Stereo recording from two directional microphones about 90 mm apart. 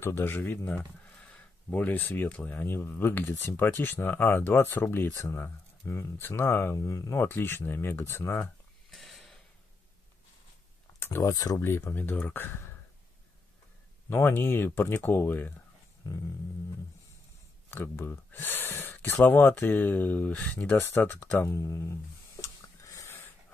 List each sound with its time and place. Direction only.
0.0 s speech: 25° left (ahead or behind)
7.2 s speech: 25° left (ahead or behind)
8.9 s a sound: 5° left (ahead or behind)
11.0 s speech: 30° left (ahead or behind)
11.3 s speech: 40° left (ahead or behind)
11.6 s speech: 25° left (ahead or behind)
14.0 s speech: 25° left (ahead or behind)
16.0 s speech: 35° left (ahead or behind)
17.6 s speech: 25° left (ahead or behind)
22.4 s a sound: 35° left (ahead or behind)